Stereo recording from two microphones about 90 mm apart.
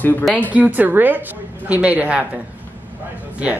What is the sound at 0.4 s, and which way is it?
A man's voice, 15° right (ahead or behind).